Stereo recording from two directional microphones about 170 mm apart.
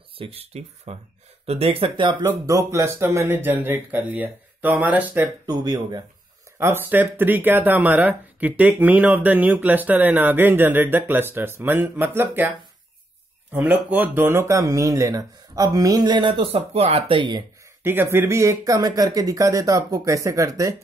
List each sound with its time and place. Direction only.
0.2 s speech: 35° right (ahead or behind)
2.4 s speech: 20° right (ahead or behind)
5.5 s speech: 25° right (ahead or behind)
6.6 s speech: 15° right (ahead or behind)
13.5 s speech: 10° right (ahead or behind); by 17.5 s 30° right (ahead or behind)
17.8 s speech: 15° right (ahead or behind)